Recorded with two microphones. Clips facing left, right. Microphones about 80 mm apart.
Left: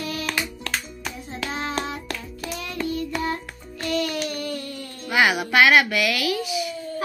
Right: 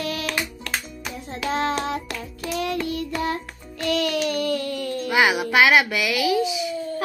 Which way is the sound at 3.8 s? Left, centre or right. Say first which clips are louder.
Right 3 dB; right.